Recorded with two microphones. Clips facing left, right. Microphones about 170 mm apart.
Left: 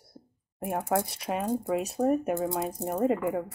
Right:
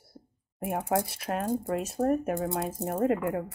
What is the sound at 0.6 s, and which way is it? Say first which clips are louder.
Speech: even; centre (ahead or behind).